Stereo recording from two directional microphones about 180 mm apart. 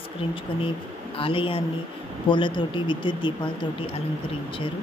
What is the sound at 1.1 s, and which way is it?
A woman's voice, 30° left (ahead or behind).